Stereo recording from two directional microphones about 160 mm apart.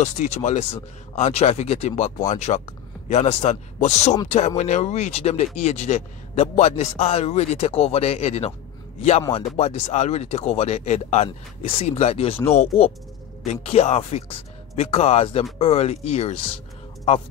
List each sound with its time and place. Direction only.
0.0 s speech: 45° left (ahead or behind)
12.4 s speech: 15° left (ahead or behind)
13.5 s speech: 40° left (ahead or behind)